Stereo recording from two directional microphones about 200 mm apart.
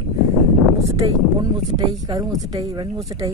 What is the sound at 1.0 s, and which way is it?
Speech, 20° right (ahead or behind).